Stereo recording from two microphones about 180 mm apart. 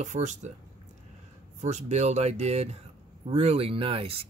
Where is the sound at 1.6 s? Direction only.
40° right (ahead or behind).